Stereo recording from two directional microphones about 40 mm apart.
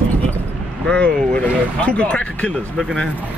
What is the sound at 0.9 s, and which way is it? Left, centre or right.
Speech, left.